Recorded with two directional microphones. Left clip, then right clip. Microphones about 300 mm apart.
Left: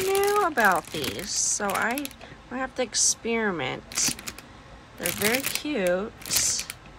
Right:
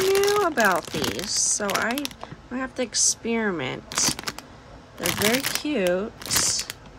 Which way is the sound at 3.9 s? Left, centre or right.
Centre.